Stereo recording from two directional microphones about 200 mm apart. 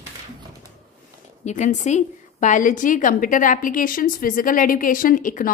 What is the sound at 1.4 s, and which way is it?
A woman's voice, 35° left (ahead or behind).